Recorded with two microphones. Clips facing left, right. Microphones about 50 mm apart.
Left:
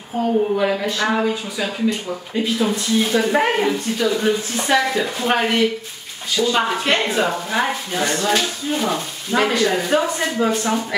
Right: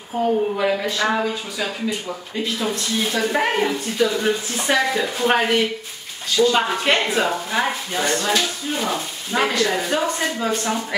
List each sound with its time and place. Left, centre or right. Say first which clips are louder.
0.2 s speech: left 1 dB; centre
2.4 s speech: left 3 dB; centre